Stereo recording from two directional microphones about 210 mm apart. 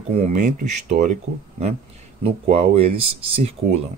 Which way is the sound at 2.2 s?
30° right (ahead or behind).